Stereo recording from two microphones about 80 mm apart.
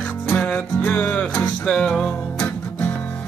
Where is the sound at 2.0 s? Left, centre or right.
Left.